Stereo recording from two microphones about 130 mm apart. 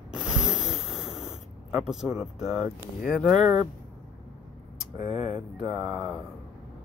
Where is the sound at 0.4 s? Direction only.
5° right (ahead or behind).